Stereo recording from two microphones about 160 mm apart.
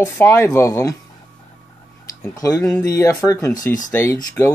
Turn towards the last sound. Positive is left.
turn(degrees=15)  # may be behind; listen again after turning